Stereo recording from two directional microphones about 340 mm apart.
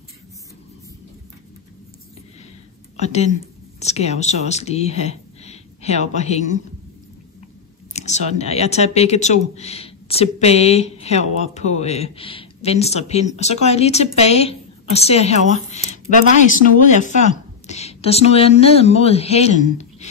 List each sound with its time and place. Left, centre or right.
3.0 s speech: centre
7.9 s speech: centre
16.6 s speech: left
19.6 s a sound: centre